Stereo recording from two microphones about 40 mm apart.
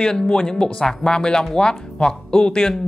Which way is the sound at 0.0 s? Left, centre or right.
Centre.